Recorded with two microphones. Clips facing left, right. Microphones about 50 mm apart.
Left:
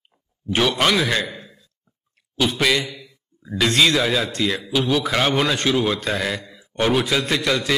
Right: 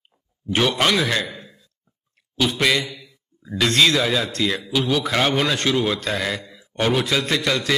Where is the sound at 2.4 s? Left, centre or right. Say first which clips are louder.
Even; centre.